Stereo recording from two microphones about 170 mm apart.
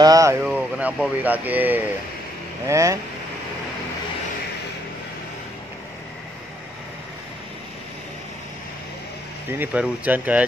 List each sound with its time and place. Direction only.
0.0 s speech: 20° right (ahead or behind)
9.5 s speech: 10° right (ahead or behind)